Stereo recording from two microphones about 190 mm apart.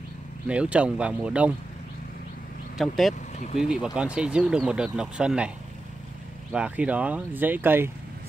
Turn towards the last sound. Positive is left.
turn(degrees=-10)  # may be behind; listen again after turning